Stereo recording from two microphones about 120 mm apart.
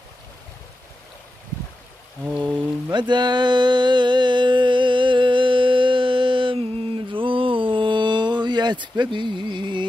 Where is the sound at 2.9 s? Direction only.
40° right (ahead or behind).